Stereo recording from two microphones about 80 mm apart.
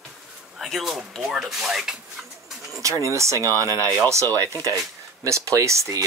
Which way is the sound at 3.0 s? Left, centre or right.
Right.